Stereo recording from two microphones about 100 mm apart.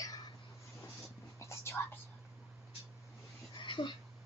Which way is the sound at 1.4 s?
30° left (ahead or behind).